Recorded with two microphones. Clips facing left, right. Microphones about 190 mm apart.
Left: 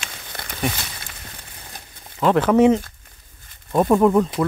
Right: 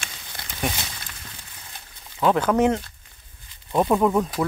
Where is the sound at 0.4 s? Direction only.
55° left (ahead or behind).